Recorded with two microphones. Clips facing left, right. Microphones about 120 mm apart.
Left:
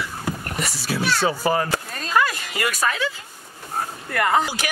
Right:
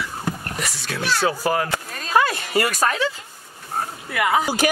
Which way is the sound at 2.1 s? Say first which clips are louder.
Right 3 dB; 35° right (ahead or behind).